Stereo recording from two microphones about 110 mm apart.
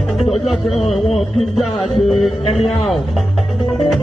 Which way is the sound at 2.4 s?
65° left (ahead or behind).